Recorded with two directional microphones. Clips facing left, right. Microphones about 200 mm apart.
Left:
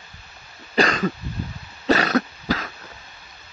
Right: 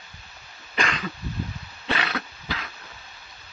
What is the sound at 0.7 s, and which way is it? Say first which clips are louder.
Cough: left 8 dB; 40° left (ahead or behind).